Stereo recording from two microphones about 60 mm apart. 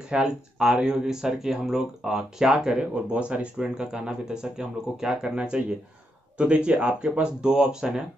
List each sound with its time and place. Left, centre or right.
0.1 s speech: centre